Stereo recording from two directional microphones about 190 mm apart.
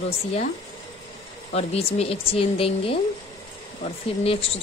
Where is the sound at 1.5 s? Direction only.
30° left (ahead or behind).